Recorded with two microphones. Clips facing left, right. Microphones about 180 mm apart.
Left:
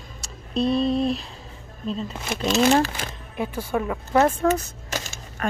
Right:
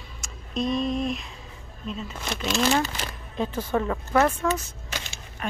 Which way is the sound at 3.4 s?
10° left (ahead or behind).